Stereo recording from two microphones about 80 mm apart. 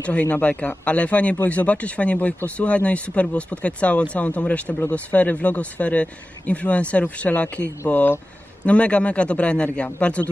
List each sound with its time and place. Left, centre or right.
0.0 s speech: centre